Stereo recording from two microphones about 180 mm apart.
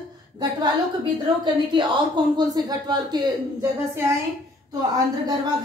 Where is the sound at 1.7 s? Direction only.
25° right (ahead or behind).